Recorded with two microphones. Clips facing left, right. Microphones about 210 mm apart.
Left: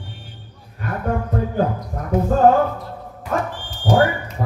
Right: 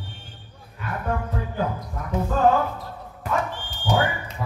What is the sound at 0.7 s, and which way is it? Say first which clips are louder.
Music: left 5 dB; 45° left (ahead or behind).